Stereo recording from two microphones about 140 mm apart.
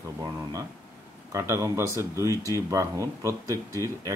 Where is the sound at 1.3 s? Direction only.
20° right (ahead or behind).